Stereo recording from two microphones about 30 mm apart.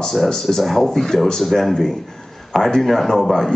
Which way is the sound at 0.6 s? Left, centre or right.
Centre.